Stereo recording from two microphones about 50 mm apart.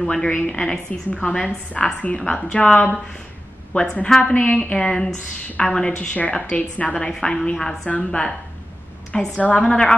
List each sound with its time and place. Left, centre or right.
0.0 s a woman's voice: centre
6.1 s a woman's voice: left
7.1 s a woman's voice: centre
7.9 s a woman's voice: left
9.4 s a woman's voice: left